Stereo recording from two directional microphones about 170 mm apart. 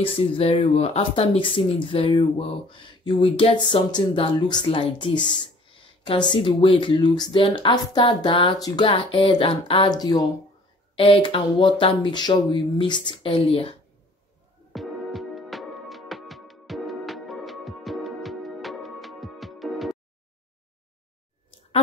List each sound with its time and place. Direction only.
0.0 s speech: 35° left (ahead or behind)
6.3 s speech: 30° left (ahead or behind)
14.7 s music: centre (ahead or behind)